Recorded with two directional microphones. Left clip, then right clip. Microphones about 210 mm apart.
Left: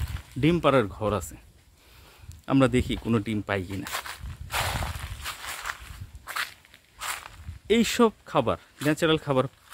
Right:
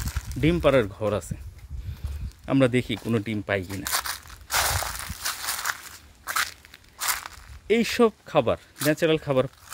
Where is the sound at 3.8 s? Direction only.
55° right (ahead or behind).